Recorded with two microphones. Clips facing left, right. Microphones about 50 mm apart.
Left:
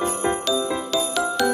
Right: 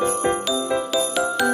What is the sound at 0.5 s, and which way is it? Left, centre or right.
Music, right.